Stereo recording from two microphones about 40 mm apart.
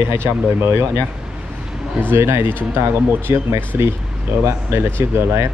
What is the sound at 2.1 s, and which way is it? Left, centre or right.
Speech, right.